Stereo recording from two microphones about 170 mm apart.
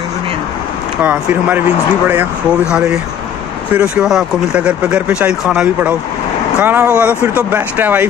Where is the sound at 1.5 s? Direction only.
10° right (ahead or behind).